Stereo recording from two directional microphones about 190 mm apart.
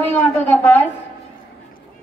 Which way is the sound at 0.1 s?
10° left (ahead or behind).